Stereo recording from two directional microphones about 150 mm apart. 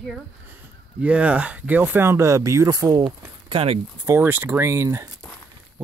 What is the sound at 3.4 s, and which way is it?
Speech, 40° right (ahead or behind).